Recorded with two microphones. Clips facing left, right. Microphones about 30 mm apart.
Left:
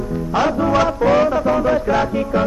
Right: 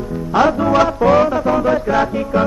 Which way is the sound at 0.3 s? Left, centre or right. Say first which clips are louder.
Right 4 dB; right.